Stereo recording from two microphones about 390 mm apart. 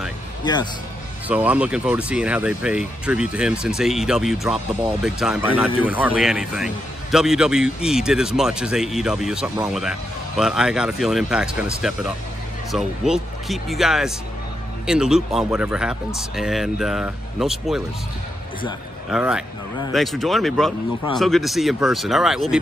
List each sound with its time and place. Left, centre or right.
0.4 s speech: centre
1.3 s a man's voice: centre
19.0 s a man's voice: centre